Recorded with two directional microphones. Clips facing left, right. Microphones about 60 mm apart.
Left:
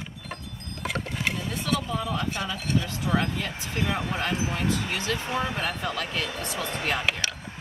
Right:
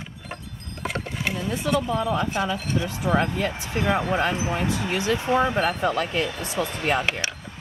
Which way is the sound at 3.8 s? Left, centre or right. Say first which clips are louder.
Right 6 dB; right.